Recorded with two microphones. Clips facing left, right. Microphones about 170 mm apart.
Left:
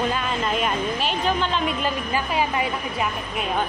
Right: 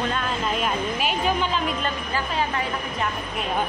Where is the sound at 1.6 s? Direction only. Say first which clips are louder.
Left 2 dB; centre (ahead or behind).